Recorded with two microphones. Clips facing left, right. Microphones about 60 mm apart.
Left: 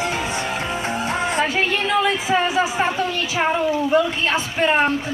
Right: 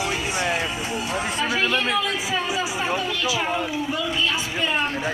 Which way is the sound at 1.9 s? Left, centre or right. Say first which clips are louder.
Left 6 dB; left.